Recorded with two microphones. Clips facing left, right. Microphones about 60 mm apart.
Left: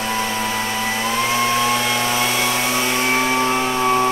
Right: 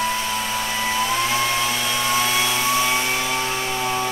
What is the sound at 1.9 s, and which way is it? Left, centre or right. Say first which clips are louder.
Vehicle: left 3 dB; left.